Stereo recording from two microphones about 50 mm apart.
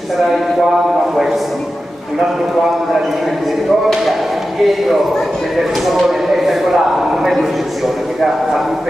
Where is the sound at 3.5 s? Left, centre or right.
Centre.